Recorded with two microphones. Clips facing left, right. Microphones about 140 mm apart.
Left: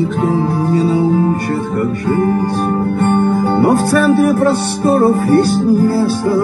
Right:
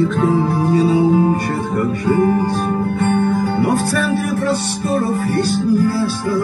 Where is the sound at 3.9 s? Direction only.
35° left (ahead or behind).